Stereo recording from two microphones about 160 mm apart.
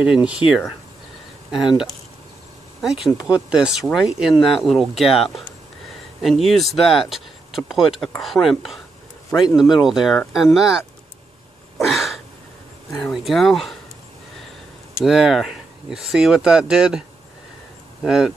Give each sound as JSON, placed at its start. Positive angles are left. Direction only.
{"t": 0.0, "sound": "speech", "side_deg": -5}
{"t": 2.8, "sound": "speech", "side_deg": 0}
{"t": 11.8, "sound": "a sound", "side_deg": 0}
{"t": 13.0, "sound": "speech", "side_deg": 0}
{"t": 15.0, "sound": "speech", "side_deg": 0}
{"t": 18.0, "sound": "speech", "side_deg": -5}